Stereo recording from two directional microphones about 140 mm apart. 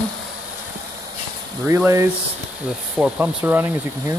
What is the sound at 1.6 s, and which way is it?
Speech, 20° right (ahead or behind).